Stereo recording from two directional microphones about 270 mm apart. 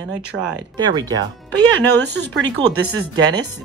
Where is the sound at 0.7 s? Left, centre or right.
Centre.